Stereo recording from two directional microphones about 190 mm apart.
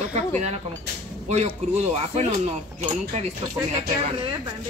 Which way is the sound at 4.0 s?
25° right (ahead or behind).